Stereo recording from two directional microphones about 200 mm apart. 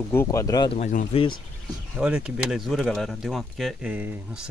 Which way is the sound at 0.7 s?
35° left (ahead or behind).